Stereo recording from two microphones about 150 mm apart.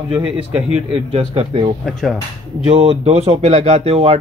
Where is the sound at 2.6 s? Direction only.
40° right (ahead or behind).